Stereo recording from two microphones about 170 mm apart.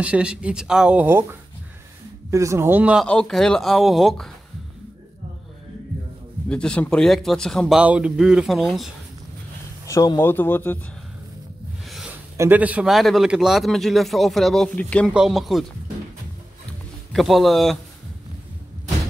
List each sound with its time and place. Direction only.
0.0 s speech: 5° right (ahead or behind)
2.3 s speech: 15° right (ahead or behind)
3.1 s speech: 5° left (ahead or behind)
6.5 s speech: 5° left (ahead or behind)
7.8 s speech: 5° right (ahead or behind)
9.8 s a man's voice: 20° left (ahead or behind)
11.8 s a sound: centre (ahead or behind)
12.4 s speech: 10° right (ahead or behind)
17.1 s speech: centre (ahead or behind)